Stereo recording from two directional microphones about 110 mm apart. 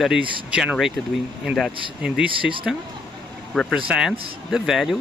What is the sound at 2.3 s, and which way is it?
Speech, 50° right (ahead or behind).